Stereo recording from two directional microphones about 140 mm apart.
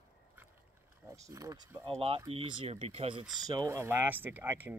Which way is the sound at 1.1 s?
25° right (ahead or behind).